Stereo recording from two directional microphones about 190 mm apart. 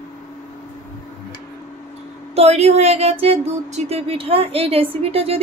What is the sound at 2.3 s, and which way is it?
Speech, 35° right (ahead or behind).